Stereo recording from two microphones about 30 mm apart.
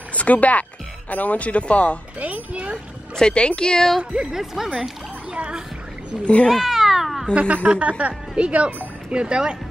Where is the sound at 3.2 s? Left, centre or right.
Left.